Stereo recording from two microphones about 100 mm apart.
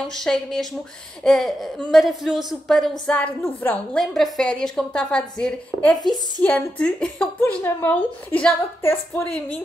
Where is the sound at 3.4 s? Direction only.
15° left (ahead or behind).